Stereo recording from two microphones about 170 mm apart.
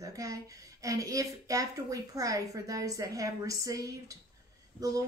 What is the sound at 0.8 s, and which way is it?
A woman's voice, 20° right (ahead or behind).